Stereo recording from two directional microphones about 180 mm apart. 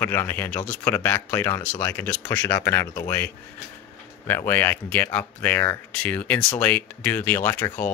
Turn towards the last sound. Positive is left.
turn(degrees=10)  # may be behind; listen again after turning